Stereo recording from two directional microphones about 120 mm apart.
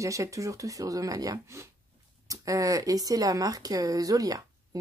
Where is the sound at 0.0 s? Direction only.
25° right (ahead or behind).